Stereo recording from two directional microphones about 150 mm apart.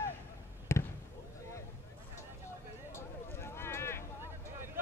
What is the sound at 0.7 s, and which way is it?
Basketball bounce, 15° left (ahead or behind).